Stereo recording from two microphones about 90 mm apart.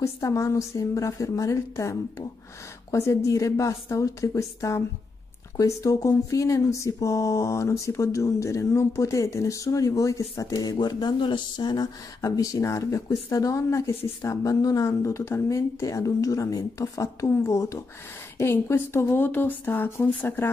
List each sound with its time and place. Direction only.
0.0 s speech: 35° left (ahead or behind)